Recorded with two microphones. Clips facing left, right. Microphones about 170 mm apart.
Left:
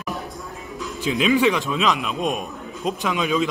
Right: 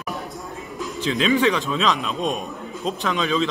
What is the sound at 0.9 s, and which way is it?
A man's voice, 10° left (ahead or behind).